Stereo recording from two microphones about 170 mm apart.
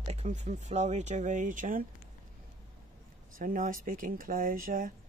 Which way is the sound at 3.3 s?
55° right (ahead or behind).